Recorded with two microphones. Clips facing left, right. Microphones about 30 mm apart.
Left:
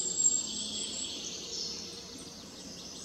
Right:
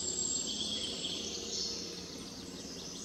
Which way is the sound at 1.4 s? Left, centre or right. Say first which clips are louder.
Right 1 dB; centre.